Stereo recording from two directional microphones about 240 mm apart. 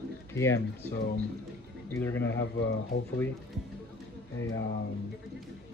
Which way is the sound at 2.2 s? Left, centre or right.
Left.